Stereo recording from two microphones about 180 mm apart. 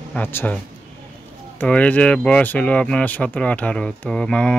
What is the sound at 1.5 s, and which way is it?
A man's voice, 10° left (ahead or behind).